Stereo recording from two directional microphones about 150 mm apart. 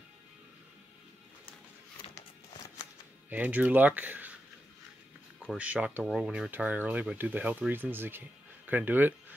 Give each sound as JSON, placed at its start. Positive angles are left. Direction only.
{"t": 3.3, "sound": "speech", "side_deg": -10}
{"t": 5.6, "sound": "speech", "side_deg": -10}